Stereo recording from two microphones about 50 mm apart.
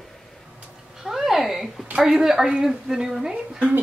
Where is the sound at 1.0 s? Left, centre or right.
Centre.